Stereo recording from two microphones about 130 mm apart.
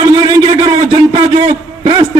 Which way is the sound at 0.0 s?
35° right (ahead or behind).